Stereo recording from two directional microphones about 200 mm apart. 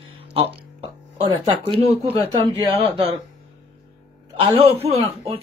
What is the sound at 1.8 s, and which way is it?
Speech, 30° right (ahead or behind).